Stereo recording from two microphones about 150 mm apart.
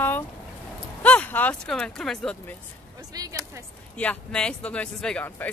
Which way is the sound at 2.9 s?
25° right (ahead or behind).